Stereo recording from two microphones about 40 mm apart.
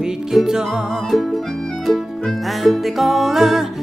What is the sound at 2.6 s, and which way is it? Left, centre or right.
Music, centre.